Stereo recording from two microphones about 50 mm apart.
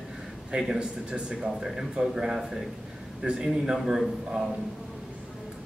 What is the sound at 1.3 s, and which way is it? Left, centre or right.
A man's voice, centre.